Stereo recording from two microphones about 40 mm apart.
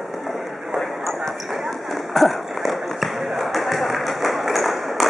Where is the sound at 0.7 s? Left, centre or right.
Centre.